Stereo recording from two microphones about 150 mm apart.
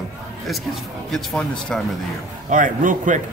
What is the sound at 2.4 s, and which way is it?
Speech, 60° right (ahead or behind).